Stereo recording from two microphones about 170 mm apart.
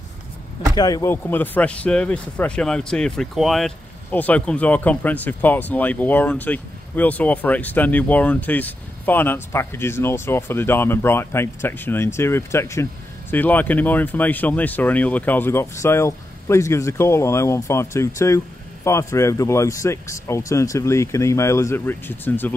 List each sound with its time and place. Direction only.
0.7 s speech: 20° left (ahead or behind)